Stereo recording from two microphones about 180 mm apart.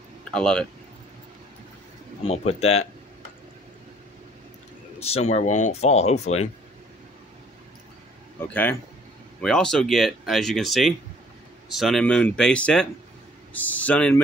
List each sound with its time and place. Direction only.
0.2 s speech: 5° left (ahead or behind)
2.2 s speech: 35° left (ahead or behind)
5.0 s speech: 35° left (ahead or behind)
8.4 s speech: 10° left (ahead or behind)